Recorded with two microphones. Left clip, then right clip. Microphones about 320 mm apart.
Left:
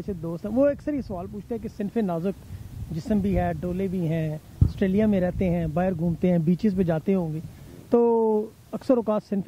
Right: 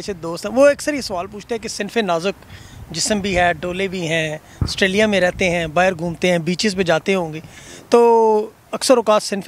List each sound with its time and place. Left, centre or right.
0.0 s speech: centre
8.7 s speech: centre